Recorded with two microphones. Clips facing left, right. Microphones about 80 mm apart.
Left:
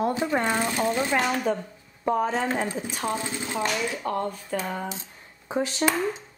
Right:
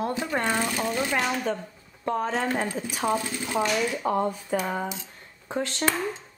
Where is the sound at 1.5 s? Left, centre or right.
Centre.